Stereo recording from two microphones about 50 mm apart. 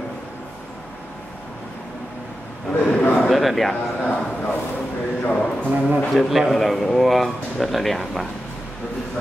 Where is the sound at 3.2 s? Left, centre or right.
Centre.